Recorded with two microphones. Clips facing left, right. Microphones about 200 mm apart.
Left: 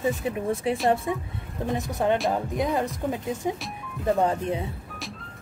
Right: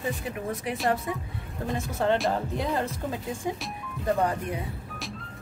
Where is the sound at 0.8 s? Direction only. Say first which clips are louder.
Left 2 dB; 25° left (ahead or behind).